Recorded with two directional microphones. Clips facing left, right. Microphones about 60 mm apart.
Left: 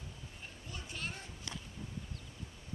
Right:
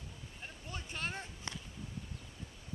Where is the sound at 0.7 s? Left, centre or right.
Right.